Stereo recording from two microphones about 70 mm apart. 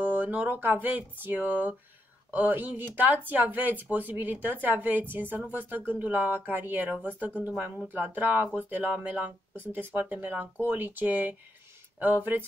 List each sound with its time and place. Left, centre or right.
0.1 s speech: right